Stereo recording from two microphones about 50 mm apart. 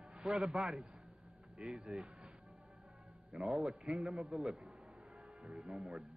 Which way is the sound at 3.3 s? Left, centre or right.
Centre.